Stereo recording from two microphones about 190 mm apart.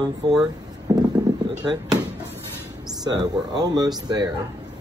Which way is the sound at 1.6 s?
20° right (ahead or behind).